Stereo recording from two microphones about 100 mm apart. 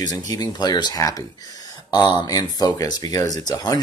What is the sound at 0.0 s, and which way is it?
Speech, 40° left (ahead or behind).